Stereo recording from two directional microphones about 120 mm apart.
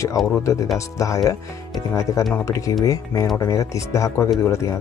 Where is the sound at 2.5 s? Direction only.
25° left (ahead or behind).